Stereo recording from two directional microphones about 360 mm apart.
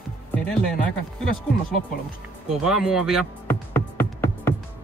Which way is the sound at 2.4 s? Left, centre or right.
Centre.